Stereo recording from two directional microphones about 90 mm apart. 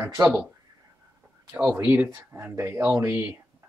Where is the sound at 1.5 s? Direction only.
10° right (ahead or behind).